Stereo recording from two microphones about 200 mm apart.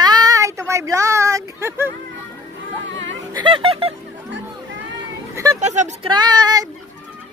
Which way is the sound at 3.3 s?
25° right (ahead or behind).